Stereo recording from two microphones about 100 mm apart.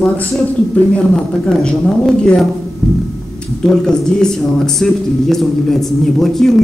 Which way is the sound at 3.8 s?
5° left (ahead or behind).